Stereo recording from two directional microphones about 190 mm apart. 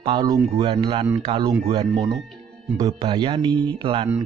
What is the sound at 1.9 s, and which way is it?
Speech, 20° right (ahead or behind).